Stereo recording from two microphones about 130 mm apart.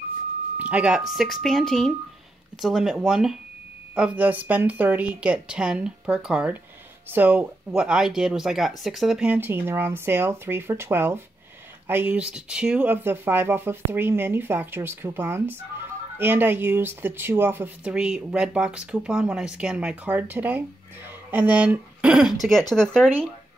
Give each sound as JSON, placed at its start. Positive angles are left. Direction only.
{"t": 0.6, "sound": "speech", "side_deg": -10}